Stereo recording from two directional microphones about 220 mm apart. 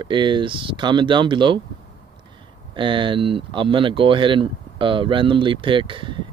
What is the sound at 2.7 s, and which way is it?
Speech, 20° right (ahead or behind).